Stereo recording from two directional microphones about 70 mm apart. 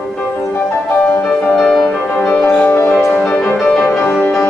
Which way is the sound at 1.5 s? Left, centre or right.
Centre.